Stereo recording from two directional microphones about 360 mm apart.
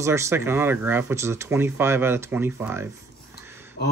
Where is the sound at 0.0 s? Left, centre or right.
Centre.